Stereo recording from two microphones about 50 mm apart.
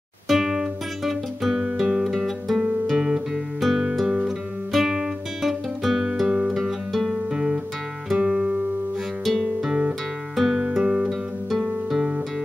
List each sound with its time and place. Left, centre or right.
0.3 s guitar: centre
2.1 s music: centre
2.9 s guitar: centre
3.6 s music: centre
6.5 s music: centre
7.2 s music: centre
9.2 s music: centre
9.6 s music: centre